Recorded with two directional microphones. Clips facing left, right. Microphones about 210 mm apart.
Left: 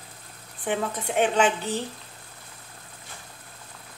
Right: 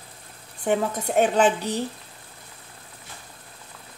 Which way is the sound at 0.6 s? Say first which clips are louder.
Right 4 dB; 40° right (ahead or behind).